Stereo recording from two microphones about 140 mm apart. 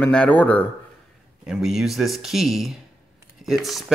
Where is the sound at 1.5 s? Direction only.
5° right (ahead or behind).